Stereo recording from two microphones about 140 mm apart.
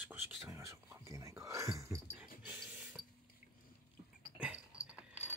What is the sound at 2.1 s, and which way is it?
Dog, 10° right (ahead or behind).